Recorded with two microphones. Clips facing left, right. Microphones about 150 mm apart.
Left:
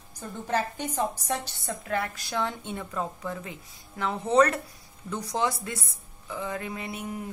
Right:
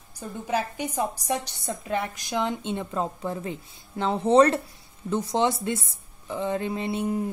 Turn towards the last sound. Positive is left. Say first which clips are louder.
# right 8 dB
turn(degrees=-30)  # may be behind; listen again after turning